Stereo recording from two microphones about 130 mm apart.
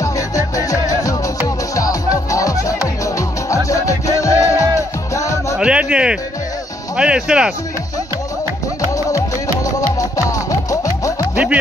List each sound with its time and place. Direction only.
0.6 s music: 25° left (ahead or behind)
5.6 s music: 10° right (ahead or behind)
7.0 s speech: 5° right (ahead or behind)
9.8 s music: 25° left (ahead or behind)
11.3 s music: 10° right (ahead or behind)